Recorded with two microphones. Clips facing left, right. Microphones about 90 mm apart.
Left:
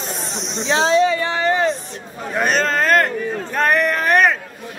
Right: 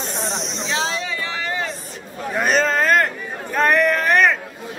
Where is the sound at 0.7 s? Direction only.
35° left (ahead or behind).